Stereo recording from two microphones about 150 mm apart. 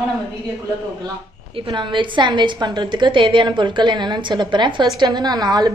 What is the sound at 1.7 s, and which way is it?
A woman's voice, 30° right (ahead or behind).